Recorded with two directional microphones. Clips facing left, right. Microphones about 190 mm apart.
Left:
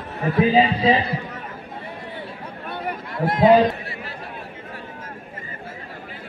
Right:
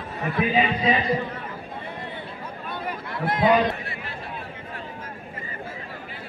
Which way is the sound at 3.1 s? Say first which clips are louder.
Left 5 dB; 40° left (ahead or behind).